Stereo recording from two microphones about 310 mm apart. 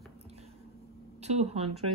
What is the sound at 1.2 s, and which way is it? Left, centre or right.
Speech, right.